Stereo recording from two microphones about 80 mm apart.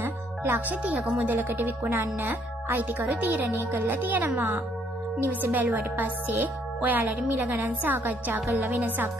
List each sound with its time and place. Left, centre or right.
0.0 s music: right
0.8 s speech: centre